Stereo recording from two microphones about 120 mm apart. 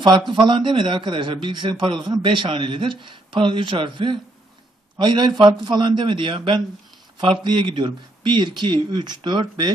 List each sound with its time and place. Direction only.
0.3 s a man's voice: 45° right (ahead or behind)